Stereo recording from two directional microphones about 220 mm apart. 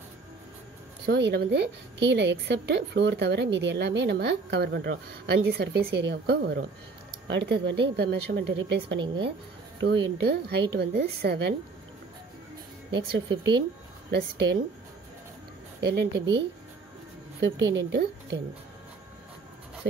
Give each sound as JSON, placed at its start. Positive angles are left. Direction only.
{"t": 1.0, "sound": "a woman's voice", "side_deg": -50}
{"t": 12.9, "sound": "a woman's voice", "side_deg": -50}
{"t": 15.8, "sound": "a woman's voice", "side_deg": -50}